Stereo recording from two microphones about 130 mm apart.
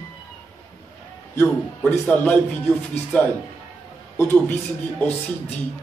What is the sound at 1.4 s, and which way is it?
A man's voice, 10° left (ahead or behind).